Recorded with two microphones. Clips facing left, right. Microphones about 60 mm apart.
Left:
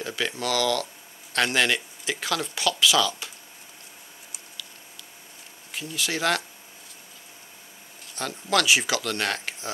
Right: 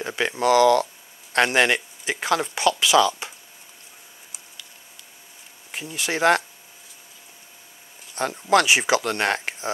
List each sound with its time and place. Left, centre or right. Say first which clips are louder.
0.0 s speech: right 6 dB; right
5.7 s speech: right 2 dB; right
8.2 s speech: right 6 dB; right